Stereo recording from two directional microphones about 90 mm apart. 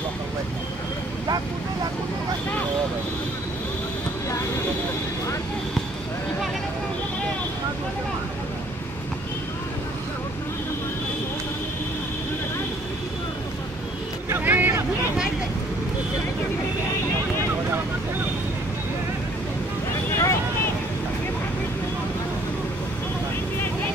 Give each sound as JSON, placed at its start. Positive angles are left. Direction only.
{"t": 14.3, "sound": "vehicle", "side_deg": -20}
{"t": 20.1, "sound": "boat", "side_deg": 35}